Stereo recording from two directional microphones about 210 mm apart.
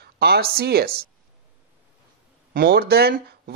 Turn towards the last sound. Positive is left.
turn(degrees=-50)  # may be behind; listen again after turning